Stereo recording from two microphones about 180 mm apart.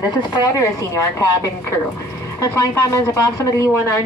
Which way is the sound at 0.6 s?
20° left (ahead or behind).